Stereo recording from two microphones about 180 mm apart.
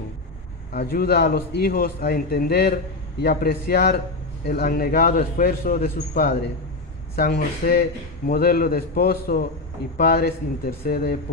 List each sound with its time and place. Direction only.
0.7 s a man's voice: 60° left (ahead or behind)